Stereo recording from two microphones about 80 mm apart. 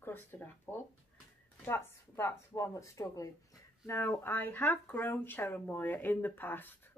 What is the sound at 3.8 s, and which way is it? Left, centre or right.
Speech, left.